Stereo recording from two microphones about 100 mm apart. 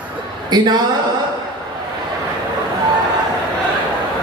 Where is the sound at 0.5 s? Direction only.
45° right (ahead or behind).